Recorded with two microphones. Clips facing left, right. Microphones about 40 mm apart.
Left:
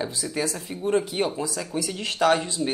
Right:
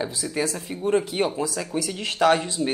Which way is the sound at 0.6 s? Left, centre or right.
Centre.